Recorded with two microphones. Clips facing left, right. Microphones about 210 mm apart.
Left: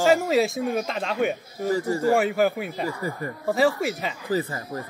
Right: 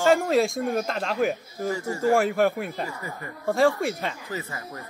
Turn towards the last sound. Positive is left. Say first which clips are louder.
# left 8 dB
turn(degrees=35)  # may be behind; listen again after turning